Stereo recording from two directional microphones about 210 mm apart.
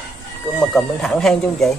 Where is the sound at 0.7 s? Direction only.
Centre (ahead or behind).